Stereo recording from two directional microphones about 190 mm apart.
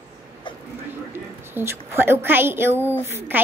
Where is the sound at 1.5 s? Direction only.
15° right (ahead or behind).